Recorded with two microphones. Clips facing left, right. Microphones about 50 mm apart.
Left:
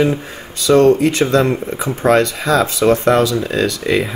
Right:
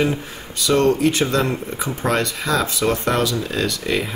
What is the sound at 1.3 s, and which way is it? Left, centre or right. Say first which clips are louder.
Speech: left 6 dB; left.